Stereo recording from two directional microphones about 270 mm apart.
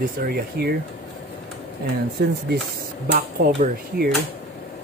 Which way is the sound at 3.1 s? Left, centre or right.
Right.